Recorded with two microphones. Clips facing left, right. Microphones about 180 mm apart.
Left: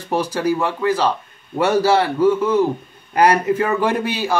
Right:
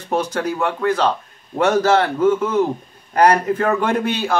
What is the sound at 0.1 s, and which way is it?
Speech, 5° left (ahead or behind).